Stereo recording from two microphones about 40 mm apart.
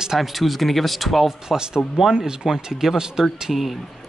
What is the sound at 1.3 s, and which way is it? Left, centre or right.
Speech, centre.